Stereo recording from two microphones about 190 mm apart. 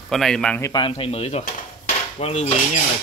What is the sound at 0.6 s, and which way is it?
Speech, 20° left (ahead or behind).